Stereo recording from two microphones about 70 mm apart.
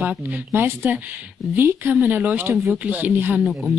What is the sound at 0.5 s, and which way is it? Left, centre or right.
A man's voice, right.